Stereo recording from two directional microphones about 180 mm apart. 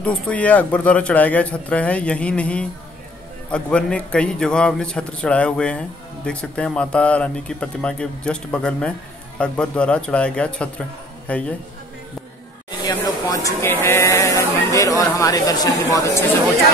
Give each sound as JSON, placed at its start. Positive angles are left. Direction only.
{"t": 0.0, "sound": "a man's voice", "side_deg": 5}
{"t": 12.8, "sound": "speech", "side_deg": 20}